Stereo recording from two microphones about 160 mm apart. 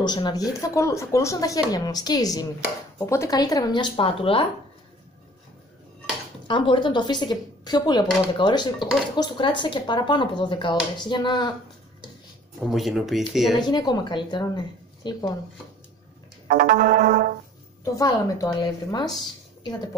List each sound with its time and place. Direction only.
0.0 s speech: 25° left (ahead or behind)
6.4 s speech: 30° left (ahead or behind)
12.6 s speech: centre (ahead or behind)
13.6 s speech: 25° left (ahead or behind)
16.4 s music: 60° right (ahead or behind)
17.9 s speech: 20° left (ahead or behind)